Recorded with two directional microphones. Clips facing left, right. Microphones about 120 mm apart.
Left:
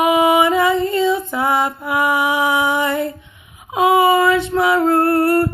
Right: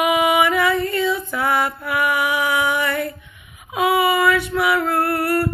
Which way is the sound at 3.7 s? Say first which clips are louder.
Left 5 dB; 25° left (ahead or behind).